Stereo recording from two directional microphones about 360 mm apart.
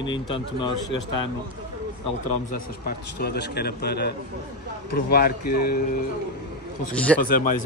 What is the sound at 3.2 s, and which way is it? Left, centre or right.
A man's voice, left.